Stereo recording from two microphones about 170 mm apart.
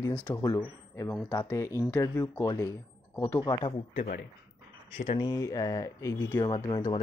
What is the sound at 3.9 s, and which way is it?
Speech, 70° left (ahead or behind).